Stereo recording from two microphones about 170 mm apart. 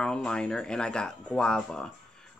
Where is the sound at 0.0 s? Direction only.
5° left (ahead or behind).